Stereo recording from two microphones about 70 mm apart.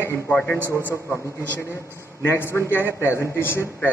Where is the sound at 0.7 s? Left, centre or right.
Left.